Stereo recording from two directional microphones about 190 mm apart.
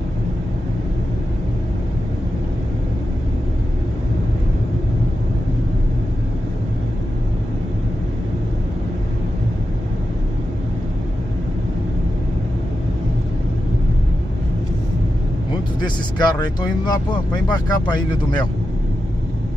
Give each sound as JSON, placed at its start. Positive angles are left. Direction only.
{"t": 15.8, "sound": "speech", "side_deg": 20}